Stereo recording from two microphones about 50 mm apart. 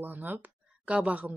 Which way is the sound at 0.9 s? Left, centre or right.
Right.